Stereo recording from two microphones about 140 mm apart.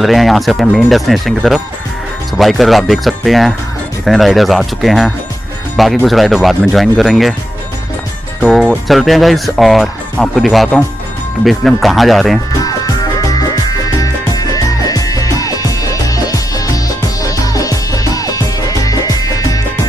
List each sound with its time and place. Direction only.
0.0 s speech: centre (ahead or behind)
8.4 s speech: 5° right (ahead or behind)
12.6 s music: 25° left (ahead or behind)